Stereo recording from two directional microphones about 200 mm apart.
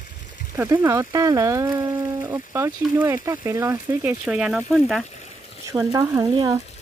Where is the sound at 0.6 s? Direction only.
15° right (ahead or behind).